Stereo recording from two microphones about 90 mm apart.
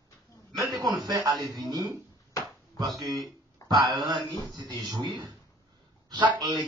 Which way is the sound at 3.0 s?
50° right (ahead or behind).